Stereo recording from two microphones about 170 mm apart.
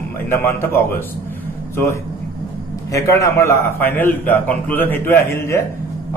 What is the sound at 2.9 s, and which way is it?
A man's voice, 15° left (ahead or behind).